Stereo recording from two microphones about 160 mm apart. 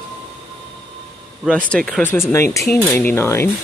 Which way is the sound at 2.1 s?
15° left (ahead or behind).